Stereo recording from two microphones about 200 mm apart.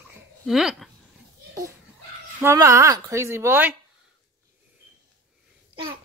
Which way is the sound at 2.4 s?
15° right (ahead or behind).